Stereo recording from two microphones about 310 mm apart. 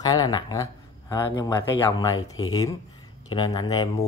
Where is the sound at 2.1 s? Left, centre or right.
Left.